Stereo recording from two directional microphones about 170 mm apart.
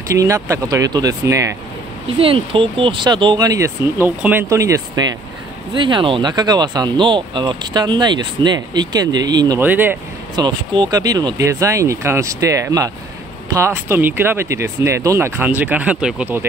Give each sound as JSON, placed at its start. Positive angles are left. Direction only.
{"t": 0.1, "sound": "speech", "side_deg": -15}
{"t": 2.1, "sound": "speech", "side_deg": -30}
{"t": 9.6, "sound": "speech", "side_deg": -10}
{"t": 10.3, "sound": "speech", "side_deg": -25}